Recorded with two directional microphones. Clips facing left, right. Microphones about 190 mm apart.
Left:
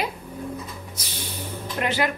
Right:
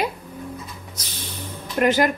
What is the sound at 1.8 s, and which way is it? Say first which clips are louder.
Speech: right 6 dB; 45° right (ahead or behind).